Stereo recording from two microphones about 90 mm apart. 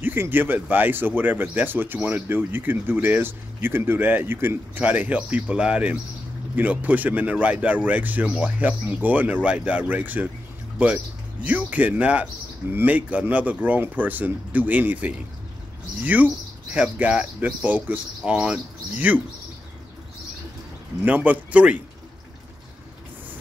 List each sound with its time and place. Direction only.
0.0 s speech: 25° right (ahead or behind)
11.4 s speech: 20° right (ahead or behind)
21.0 s speech: 20° right (ahead or behind)